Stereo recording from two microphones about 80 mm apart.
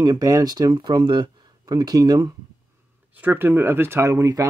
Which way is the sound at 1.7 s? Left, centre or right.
Right.